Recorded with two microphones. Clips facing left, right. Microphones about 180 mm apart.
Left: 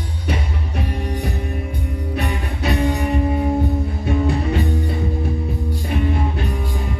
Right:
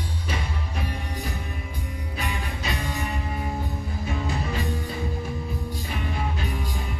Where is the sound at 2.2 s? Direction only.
65° left (ahead or behind).